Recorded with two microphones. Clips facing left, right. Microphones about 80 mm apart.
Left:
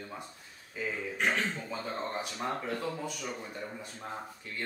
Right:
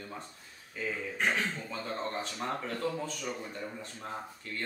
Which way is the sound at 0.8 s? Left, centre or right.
Centre.